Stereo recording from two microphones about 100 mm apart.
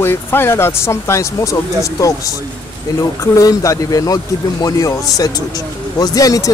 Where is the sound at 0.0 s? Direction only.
25° left (ahead or behind).